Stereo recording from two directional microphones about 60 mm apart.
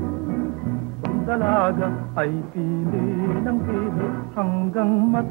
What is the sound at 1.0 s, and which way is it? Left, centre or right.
Music, left.